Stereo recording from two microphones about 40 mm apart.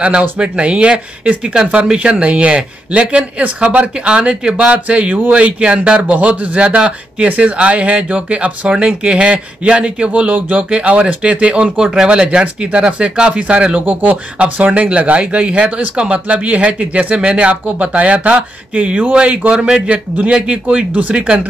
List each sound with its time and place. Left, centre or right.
0.4 s speech: right
11.6 s speech: centre